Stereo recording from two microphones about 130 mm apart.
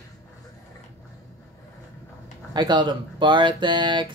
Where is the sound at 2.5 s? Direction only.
35° right (ahead or behind).